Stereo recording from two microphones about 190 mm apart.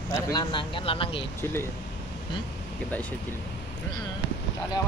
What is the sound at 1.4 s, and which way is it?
Speech, 15° left (ahead or behind).